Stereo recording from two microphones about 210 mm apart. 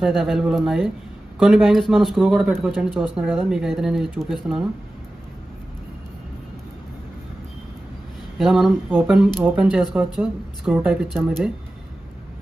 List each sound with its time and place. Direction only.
0.0 s speech: centre (ahead or behind)
8.4 s speech: centre (ahead or behind)